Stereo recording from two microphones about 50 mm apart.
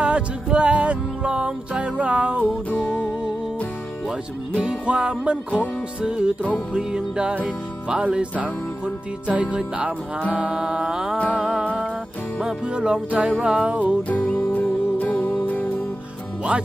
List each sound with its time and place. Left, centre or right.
0.0 s music: right
2.7 s music: left
4.6 s music: right
12.6 s music: centre
14.2 s music: left
14.5 s music: left